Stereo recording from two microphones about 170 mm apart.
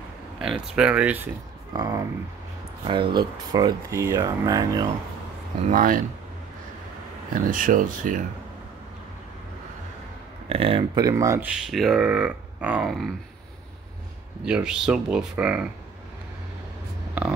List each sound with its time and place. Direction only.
0.4 s speech: 5° right (ahead or behind)
1.7 s speech: 20° right (ahead or behind)
5.6 s speech: 50° right (ahead or behind)
7.3 s speech: 55° right (ahead or behind)
10.5 s speech: 35° right (ahead or behind)
11.0 s speech: 20° right (ahead or behind); by 13.1 s centre (ahead or behind)
14.4 s speech: 5° right (ahead or behind)